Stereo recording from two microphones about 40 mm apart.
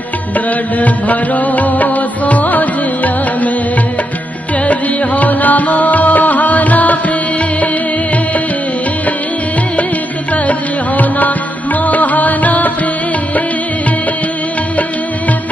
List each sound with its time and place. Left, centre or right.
0.7 s music: left
4.6 s music: left
11.0 s music: left